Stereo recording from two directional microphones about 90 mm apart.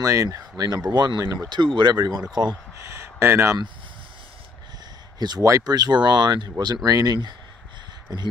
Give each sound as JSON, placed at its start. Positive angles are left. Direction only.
{"t": 0.0, "sound": "speech", "side_deg": -35}
{"t": 1.8, "sound": "speech", "side_deg": -55}
{"t": 2.9, "sound": "speech", "side_deg": -30}
{"t": 5.2, "sound": "speech", "side_deg": -50}